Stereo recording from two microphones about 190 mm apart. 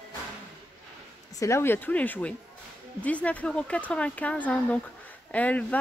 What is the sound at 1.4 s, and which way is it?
Speech, 15° left (ahead or behind).